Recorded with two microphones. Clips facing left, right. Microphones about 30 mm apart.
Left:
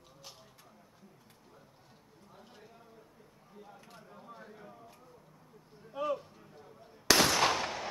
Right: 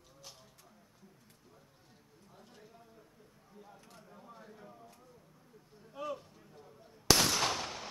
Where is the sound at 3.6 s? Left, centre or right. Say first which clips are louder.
Left 3 dB; centre.